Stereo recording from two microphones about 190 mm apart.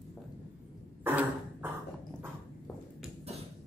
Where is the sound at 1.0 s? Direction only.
10° right (ahead or behind).